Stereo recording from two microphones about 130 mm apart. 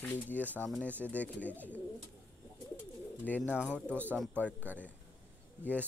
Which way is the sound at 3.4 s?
10° right (ahead or behind).